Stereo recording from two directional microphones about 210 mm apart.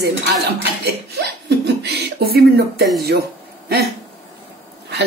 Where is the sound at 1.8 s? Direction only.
50° right (ahead or behind).